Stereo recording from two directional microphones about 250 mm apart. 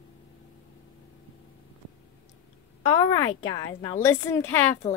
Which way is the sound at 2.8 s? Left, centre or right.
Centre.